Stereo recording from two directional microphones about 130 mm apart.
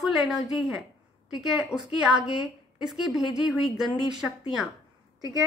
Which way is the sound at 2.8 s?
Centre (ahead or behind).